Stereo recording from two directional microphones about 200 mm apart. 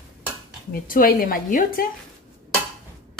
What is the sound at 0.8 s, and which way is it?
Speech, 45° left (ahead or behind).